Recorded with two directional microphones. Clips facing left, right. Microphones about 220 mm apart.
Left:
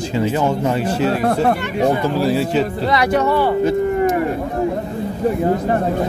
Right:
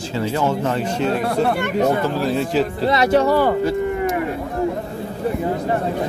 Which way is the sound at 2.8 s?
25° right (ahead or behind).